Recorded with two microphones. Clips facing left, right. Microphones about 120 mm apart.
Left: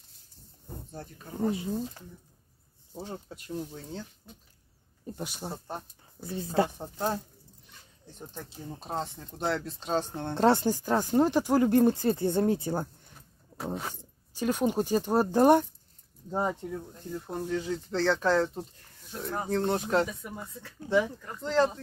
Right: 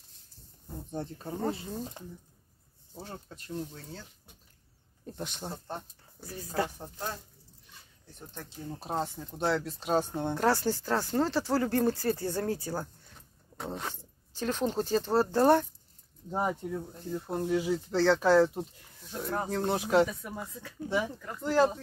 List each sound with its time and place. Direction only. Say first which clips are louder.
0.9 s speech: right 3 dB; 30° right (ahead or behind)
3.0 s speech: left 4 dB; 15° left (ahead or behind)
5.0 s speech: left 1 dB; 5° left (ahead or behind)
6.2 s speech: left 5 dB; 25° left (ahead or behind)
8.7 s speech: right 1 dB; 5° right (ahead or behind)
10.3 s speech: left 5 dB; 25° left (ahead or behind)
13.7 s speech: left 1 dB; 10° left (ahead or behind)
16.3 s speech: left 1 dB; 5° right (ahead or behind)